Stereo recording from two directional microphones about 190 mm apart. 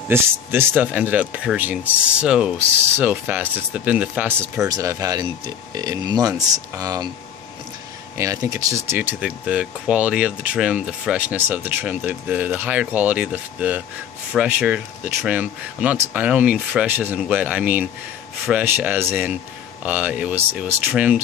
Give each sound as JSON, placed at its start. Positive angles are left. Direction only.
{"t": 0.1, "sound": "speech", "side_deg": -10}
{"t": 8.2, "sound": "speech", "side_deg": -15}